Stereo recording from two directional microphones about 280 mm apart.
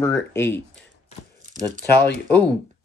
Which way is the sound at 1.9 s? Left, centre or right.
Left.